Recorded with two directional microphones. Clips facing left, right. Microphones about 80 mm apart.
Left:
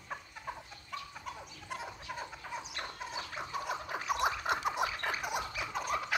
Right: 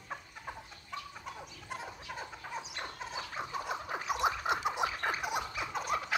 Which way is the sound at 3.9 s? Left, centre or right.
Centre.